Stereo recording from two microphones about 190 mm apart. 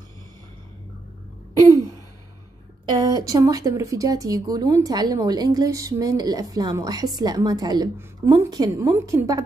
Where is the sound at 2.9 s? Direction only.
20° right (ahead or behind).